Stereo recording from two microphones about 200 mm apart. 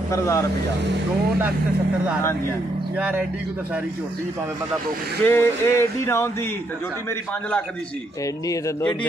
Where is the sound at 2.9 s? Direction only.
10° right (ahead or behind).